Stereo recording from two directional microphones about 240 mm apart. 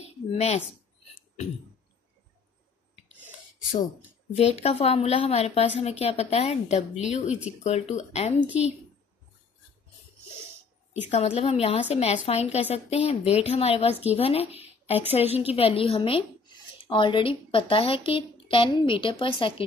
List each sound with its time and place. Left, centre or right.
0.0 s a sound: left
4.4 s a woman's voice: left
11.1 s a woman's voice: left